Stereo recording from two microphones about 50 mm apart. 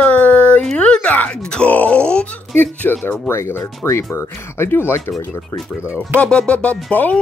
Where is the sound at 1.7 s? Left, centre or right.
Left.